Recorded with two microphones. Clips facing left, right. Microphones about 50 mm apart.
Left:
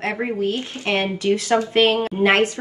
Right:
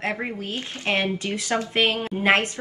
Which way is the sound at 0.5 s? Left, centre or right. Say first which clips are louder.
Left 3 dB; right.